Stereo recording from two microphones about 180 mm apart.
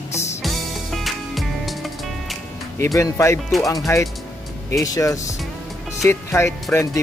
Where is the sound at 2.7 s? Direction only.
15° left (ahead or behind).